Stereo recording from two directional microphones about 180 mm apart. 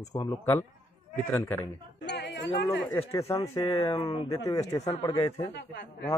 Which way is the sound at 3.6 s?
30° left (ahead or behind).